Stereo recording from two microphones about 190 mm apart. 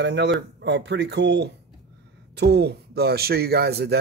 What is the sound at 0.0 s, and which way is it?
Speech, 65° right (ahead or behind).